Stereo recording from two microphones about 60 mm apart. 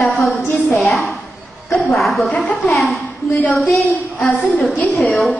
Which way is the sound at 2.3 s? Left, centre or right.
Left.